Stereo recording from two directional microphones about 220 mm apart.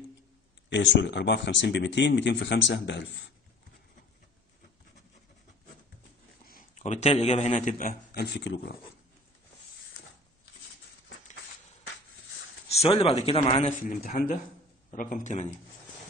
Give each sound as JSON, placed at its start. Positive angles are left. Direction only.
{"t": 0.7, "sound": "speech", "side_deg": 55}
{"t": 6.4, "sound": "a man's voice", "side_deg": 35}
{"t": 12.6, "sound": "a man's voice", "side_deg": 25}